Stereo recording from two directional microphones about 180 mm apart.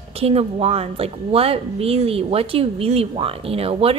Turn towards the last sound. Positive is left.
turn(degrees=-30)  # may be behind; listen again after turning